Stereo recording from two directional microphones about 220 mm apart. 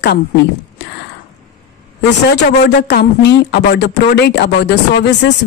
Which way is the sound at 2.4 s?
50° left (ahead or behind).